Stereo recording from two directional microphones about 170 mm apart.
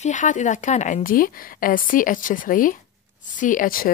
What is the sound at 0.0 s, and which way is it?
A woman's voice, 45° left (ahead or behind).